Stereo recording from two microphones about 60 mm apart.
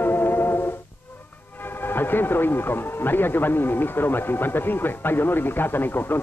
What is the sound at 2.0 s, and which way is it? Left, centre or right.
Speech, left.